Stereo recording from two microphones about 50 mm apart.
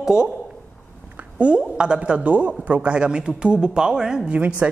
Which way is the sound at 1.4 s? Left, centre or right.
Centre.